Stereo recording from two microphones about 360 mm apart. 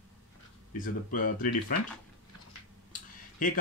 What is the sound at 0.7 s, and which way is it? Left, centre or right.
Speech, left.